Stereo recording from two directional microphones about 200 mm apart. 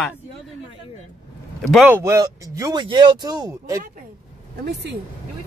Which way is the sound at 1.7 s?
5° right (ahead or behind).